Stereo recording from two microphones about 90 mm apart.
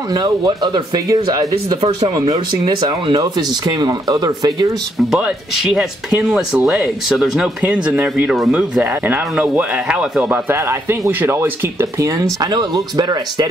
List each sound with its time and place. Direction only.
0.1 s speech: 50° right (ahead or behind)
4.9 s speech: 5° right (ahead or behind)
7.6 s speech: 15° right (ahead or behind)
9.0 s speech: 20° right (ahead or behind)
10.3 s speech: 25° right (ahead or behind); by 13.5 s 45° right (ahead or behind)